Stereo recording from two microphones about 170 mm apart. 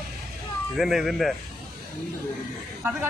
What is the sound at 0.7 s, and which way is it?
Speech, centre (ahead or behind).